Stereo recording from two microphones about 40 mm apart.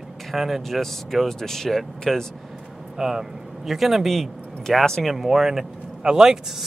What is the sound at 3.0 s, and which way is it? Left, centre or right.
Speech, centre.